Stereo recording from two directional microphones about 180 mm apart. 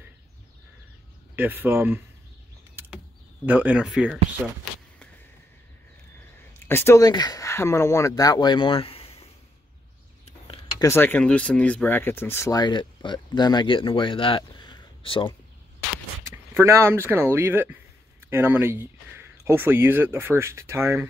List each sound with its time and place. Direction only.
1.3 s speech: 10° right (ahead or behind)
3.4 s speech: 10° right (ahead or behind)
6.7 s speech: 15° left (ahead or behind); by 9.3 s 30° left (ahead or behind)
10.8 s speech: 10° left (ahead or behind); by 15.3 s 30° left (ahead or behind)
16.5 s speech: 15° right (ahead or behind)